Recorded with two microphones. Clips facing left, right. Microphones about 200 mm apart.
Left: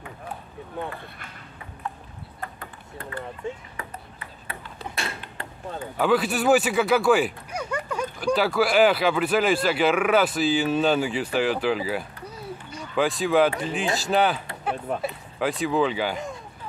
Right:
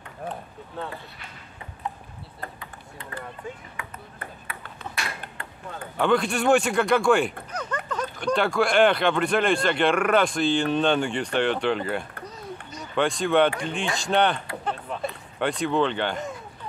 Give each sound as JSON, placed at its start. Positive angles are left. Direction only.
{"t": 0.8, "sound": "speech", "side_deg": 15}
{"t": 2.6, "sound": "ping", "side_deg": 55}
{"t": 3.8, "sound": "ping", "side_deg": 35}
{"t": 5.9, "sound": "speech", "side_deg": 5}